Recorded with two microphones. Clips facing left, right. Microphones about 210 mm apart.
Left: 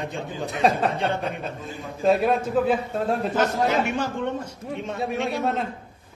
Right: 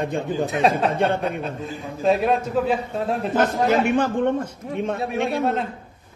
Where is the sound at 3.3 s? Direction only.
50° right (ahead or behind).